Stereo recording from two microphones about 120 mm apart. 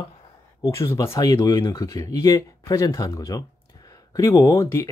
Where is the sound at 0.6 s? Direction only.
25° left (ahead or behind).